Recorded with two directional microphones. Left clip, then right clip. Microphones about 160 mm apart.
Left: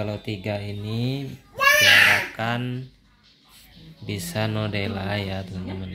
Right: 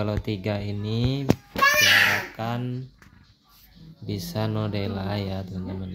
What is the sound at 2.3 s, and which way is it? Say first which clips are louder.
Speech: left 4 dB; 10° right (ahead or behind).